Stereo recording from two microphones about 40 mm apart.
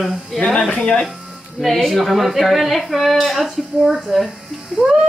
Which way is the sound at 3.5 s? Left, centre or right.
Centre.